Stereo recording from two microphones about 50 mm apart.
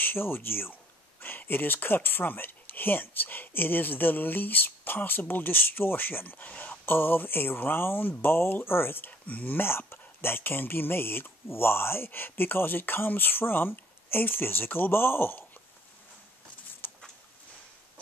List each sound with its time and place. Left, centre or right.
0.0 s speech: left
6.9 s speech: left
9.2 s speech: left
9.6 s speech: left
16.8 s a sound: left